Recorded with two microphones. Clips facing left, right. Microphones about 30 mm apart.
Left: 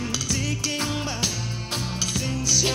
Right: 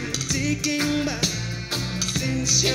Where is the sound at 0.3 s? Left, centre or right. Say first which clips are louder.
Right 6 dB; centre.